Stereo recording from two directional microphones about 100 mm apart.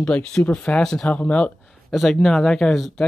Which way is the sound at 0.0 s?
10° left (ahead or behind).